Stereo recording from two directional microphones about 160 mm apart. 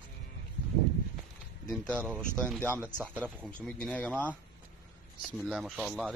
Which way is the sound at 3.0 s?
10° right (ahead or behind).